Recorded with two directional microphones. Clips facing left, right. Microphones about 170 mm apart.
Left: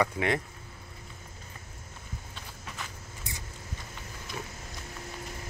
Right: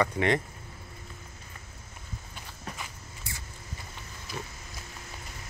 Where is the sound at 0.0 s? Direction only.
5° left (ahead or behind).